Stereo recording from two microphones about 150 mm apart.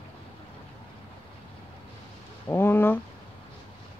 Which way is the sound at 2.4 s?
15° left (ahead or behind).